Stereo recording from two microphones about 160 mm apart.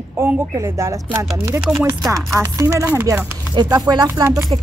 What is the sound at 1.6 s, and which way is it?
Chopping, 5° right (ahead or behind).